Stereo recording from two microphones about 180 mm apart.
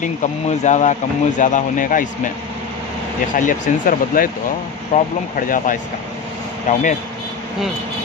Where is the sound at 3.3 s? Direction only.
45° left (ahead or behind).